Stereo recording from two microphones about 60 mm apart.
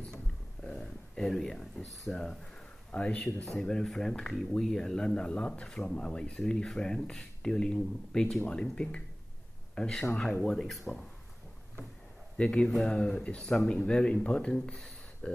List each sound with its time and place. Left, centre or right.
0.7 s a sound: centre
2.0 s speech: centre
12.4 s speech: centre